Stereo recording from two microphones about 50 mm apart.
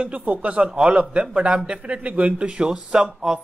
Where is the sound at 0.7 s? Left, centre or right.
Centre.